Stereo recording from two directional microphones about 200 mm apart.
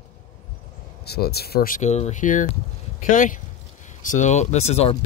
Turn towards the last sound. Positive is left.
turn(degrees=30)  # may be behind; listen again after turning